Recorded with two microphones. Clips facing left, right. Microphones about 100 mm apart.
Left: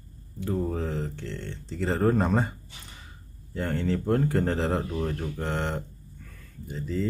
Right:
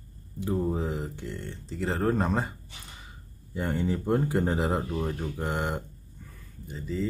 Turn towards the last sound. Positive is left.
turn(degrees=0)  # may be behind; listen again after turning